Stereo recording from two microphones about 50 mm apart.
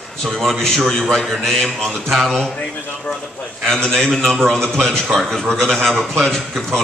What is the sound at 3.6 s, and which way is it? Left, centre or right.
Speech, centre.